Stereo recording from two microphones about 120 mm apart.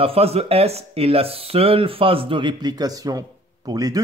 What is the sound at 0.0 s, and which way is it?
A man's voice, 55° right (ahead or behind).